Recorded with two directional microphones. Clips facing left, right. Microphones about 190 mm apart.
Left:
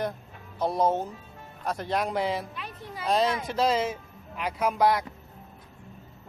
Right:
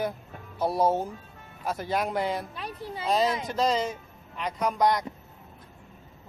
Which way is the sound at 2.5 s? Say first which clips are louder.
Right 3 dB; 35° right (ahead or behind).